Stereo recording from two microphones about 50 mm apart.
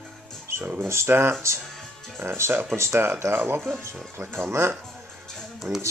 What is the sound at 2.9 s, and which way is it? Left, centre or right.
Speech, right.